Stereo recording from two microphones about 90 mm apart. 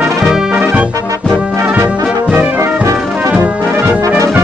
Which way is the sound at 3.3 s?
15° right (ahead or behind).